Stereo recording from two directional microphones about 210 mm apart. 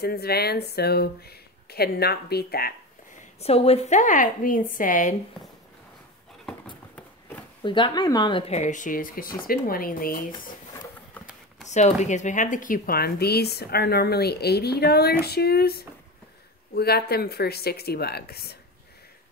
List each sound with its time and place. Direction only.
0.0 s speech: 50° left (ahead or behind)
3.3 s speech: 30° left (ahead or behind)
7.0 s a sound: 10° left (ahead or behind)
7.6 s speech: 20° left (ahead or behind); by 10.5 s 40° left (ahead or behind)
11.6 s speech: 35° left (ahead or behind)